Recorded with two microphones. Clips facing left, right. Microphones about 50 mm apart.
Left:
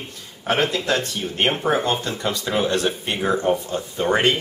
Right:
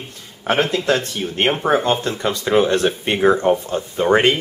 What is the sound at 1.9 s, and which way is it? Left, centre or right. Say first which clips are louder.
Speech: right 4 dB; right.